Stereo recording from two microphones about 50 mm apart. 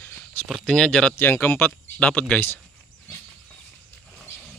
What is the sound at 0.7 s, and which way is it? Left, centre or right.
Speech, centre.